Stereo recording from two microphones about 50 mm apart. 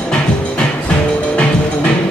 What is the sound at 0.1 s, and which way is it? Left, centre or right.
Music, left.